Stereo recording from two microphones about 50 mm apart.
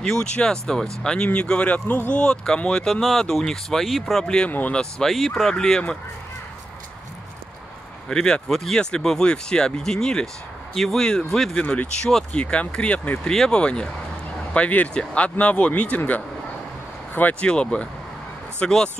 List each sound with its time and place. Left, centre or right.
0.0 s speech: centre
1.9 s speech: left
2.1 s speech: centre
4.5 s speech: left
4.7 s speech: centre
8.1 s speech: centre
8.5 s speech: centre
11.6 s speech: left
12.0 s speech: centre
12.4 s speech: left
13.2 s speech: centre
17.1 s speech: left
17.5 s speech: left